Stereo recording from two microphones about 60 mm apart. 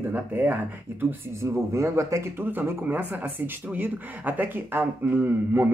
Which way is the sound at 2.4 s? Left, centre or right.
Right.